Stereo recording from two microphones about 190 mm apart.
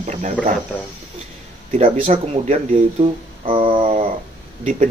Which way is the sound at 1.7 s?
30° right (ahead or behind).